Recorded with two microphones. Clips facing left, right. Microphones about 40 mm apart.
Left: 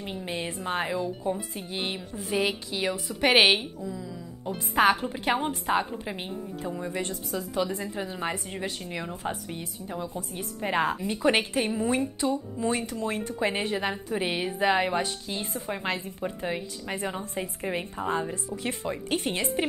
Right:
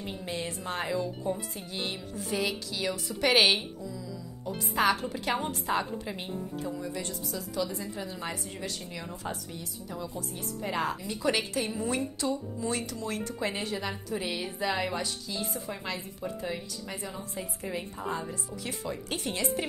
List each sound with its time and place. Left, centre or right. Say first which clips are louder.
0.2 s a woman's voice: left 3 dB; left
11.7 s a woman's voice: left 4 dB; left